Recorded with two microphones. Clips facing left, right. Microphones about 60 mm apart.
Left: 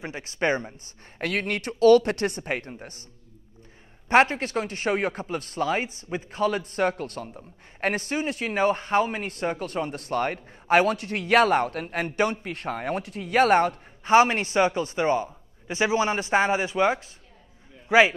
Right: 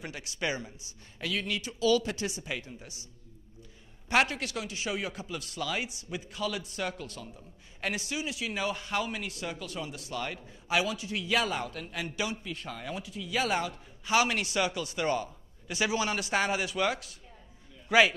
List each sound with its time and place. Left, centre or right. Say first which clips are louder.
0.0 s speech: left 8 dB; left
4.1 s a man's voice: left 8 dB; left